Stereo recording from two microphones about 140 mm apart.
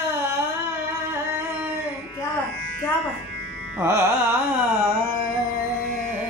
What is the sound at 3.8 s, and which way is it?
Carnatic music, 15° right (ahead or behind).